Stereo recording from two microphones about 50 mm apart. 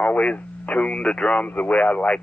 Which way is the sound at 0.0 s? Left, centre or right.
Left.